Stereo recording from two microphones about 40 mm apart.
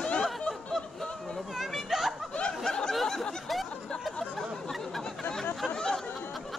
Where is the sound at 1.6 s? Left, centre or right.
Centre.